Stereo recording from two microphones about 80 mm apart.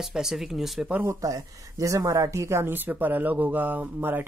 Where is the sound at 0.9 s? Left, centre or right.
Right.